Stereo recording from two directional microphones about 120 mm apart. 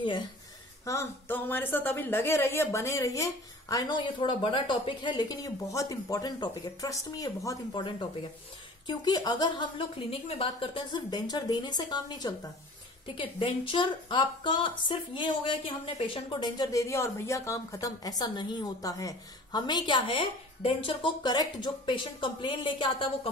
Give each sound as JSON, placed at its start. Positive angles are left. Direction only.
{"t": 0.8, "sound": "a woman's voice", "side_deg": 20}
{"t": 8.8, "sound": "speech", "side_deg": 35}